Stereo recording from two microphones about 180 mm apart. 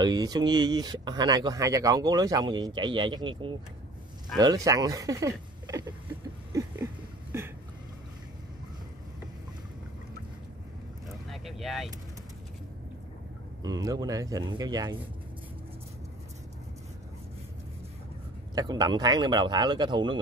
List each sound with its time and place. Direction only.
0.0 s speech: 20° right (ahead or behind)
6.5 s a sound: 15° right (ahead or behind)
11.2 s vehicle: centre (ahead or behind)
13.7 s speech: 20° right (ahead or behind)
18.5 s speech: 20° right (ahead or behind)